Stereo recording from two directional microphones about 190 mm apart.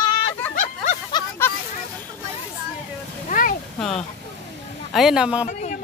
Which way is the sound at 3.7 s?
5° left (ahead or behind).